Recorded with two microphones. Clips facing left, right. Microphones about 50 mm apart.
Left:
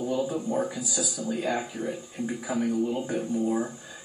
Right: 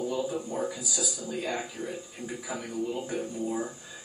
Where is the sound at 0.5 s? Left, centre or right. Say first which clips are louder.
Left 4 dB; left.